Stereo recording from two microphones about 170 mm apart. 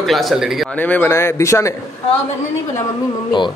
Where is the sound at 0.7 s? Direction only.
10° left (ahead or behind).